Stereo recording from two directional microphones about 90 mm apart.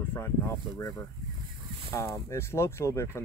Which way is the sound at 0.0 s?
25° left (ahead or behind).